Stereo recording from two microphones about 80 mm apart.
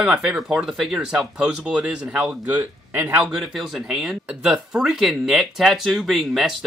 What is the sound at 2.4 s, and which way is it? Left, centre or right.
Speech, right.